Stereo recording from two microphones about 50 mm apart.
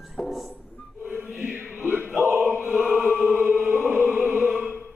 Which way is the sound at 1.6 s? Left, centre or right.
Right.